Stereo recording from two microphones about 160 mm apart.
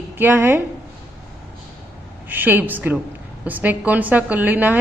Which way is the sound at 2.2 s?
10° right (ahead or behind).